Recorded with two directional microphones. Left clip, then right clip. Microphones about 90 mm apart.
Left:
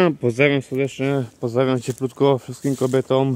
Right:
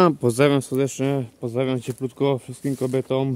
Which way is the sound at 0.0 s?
25° right (ahead or behind).